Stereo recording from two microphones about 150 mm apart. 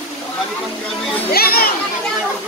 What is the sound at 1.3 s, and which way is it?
Speech, 90° left.